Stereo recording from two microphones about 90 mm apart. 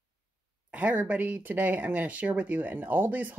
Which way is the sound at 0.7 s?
15° right (ahead or behind).